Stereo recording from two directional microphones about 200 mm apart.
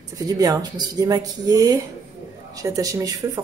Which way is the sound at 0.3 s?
20° right (ahead or behind).